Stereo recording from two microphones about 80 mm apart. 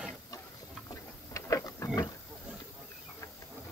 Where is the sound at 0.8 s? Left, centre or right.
Left.